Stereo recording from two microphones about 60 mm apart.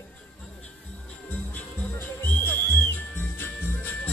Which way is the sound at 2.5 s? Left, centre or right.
Left.